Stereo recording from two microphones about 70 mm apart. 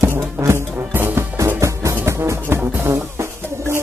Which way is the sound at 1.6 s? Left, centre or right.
Right.